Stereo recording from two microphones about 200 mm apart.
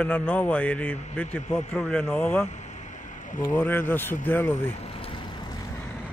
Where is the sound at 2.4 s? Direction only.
35° left (ahead or behind).